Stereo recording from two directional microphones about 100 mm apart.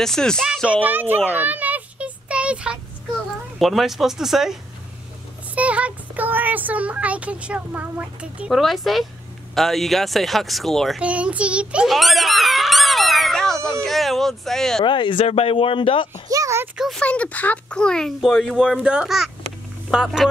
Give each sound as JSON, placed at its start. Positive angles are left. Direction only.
{"t": 0.0, "sound": "speech", "side_deg": 5}
{"t": 0.8, "sound": "a child's voice", "side_deg": -20}
{"t": 1.3, "sound": "a sound", "side_deg": -15}
{"t": 3.5, "sound": "speech", "side_deg": 0}
{"t": 8.5, "sound": "speech", "side_deg": 0}
{"t": 11.0, "sound": "speech", "side_deg": -15}
{"t": 11.9, "sound": "a sound", "side_deg": 0}
{"t": 13.7, "sound": "speech", "side_deg": 5}
{"t": 14.9, "sound": "speech", "side_deg": 55}
{"t": 15.2, "sound": "speech", "side_deg": 80}
{"t": 16.3, "sound": "a sound", "side_deg": -35}
{"t": 16.7, "sound": "speech", "side_deg": -5}
{"t": 17.0, "sound": "speech", "side_deg": 10}